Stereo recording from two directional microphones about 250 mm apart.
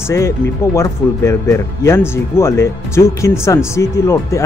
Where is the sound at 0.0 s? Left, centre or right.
Centre.